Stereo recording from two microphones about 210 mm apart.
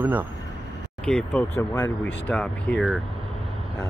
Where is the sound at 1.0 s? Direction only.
5° left (ahead or behind).